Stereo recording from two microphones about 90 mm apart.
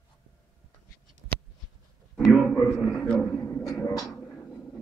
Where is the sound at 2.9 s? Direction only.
10° left (ahead or behind).